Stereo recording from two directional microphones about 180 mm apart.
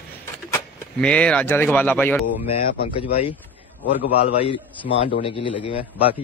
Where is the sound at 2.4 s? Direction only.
35° left (ahead or behind).